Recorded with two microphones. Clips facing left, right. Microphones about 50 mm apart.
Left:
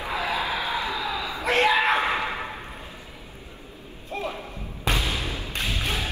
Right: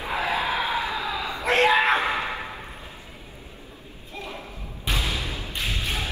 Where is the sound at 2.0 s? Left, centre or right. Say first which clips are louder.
Left 1 dB; left.